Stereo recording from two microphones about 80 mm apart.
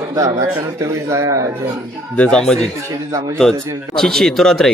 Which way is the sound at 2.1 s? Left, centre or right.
Centre.